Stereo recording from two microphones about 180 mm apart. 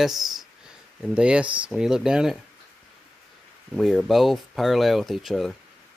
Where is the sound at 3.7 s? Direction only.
Centre (ahead or behind).